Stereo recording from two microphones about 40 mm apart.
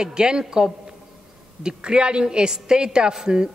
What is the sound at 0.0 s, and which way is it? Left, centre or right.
A man's voice, centre.